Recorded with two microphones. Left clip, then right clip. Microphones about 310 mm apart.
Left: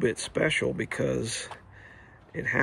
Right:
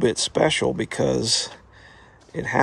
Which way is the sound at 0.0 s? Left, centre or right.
Centre.